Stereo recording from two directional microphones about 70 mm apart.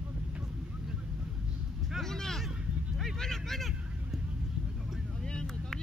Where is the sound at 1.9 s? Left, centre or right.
Centre.